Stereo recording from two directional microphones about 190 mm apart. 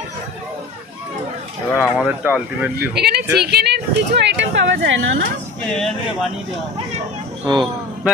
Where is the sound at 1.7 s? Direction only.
5° right (ahead or behind).